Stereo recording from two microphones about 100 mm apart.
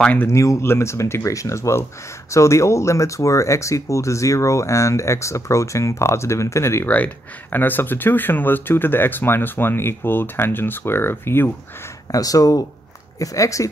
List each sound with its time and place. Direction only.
0.0 s speech: 15° left (ahead or behind)
0.3 s speech: 30° left (ahead or behind)
12.1 s speech: 35° left (ahead or behind)